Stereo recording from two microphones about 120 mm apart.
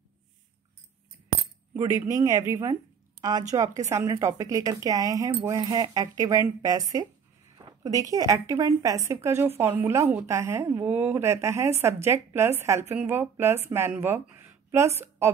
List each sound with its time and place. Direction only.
1.8 s a woman's voice: 25° right (ahead or behind)
14.3 s a sound: 20° right (ahead or behind)
15.0 s a woman's voice: 20° right (ahead or behind)